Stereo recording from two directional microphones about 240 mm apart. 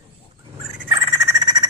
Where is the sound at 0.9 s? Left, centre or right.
Centre.